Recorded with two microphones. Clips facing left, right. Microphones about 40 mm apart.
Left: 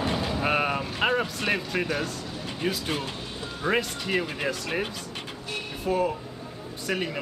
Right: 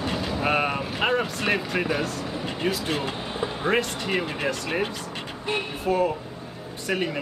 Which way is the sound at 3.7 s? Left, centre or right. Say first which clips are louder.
Right 1 dB; centre.